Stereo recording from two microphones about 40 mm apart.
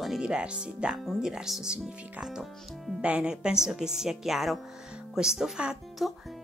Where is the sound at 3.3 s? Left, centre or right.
Centre.